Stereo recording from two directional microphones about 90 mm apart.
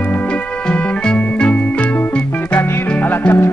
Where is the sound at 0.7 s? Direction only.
10° left (ahead or behind).